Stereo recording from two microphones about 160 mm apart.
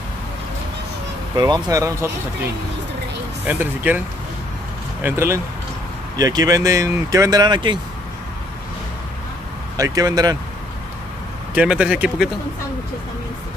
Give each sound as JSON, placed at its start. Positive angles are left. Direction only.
{"t": 1.3, "sound": "speech", "side_deg": -25}
{"t": 3.4, "sound": "speech", "side_deg": -10}
{"t": 5.0, "sound": "speech", "side_deg": -15}
{"t": 9.8, "sound": "speech", "side_deg": -20}
{"t": 11.5, "sound": "speech", "side_deg": -5}